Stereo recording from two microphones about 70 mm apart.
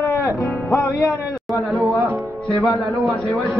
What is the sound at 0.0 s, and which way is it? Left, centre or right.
Speech, left.